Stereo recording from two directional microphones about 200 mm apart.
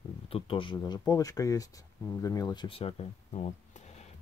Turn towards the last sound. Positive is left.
turn(degrees=30)  # may be behind; listen again after turning